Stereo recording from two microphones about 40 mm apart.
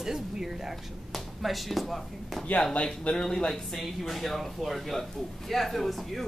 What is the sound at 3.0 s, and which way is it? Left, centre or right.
Speech, centre.